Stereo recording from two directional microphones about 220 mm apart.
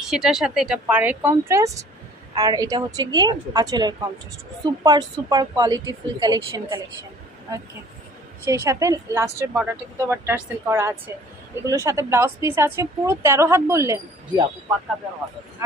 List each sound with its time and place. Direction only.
0.1 s a woman's voice: centre (ahead or behind); by 6.8 s 15° right (ahead or behind)
8.5 s speech: 15° right (ahead or behind)